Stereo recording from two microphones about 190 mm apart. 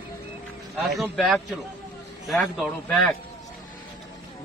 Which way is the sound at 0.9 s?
Centre (ahead or behind).